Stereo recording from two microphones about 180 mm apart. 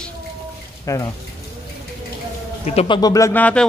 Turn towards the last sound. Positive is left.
turn(degrees=10)  # may be behind; listen again after turning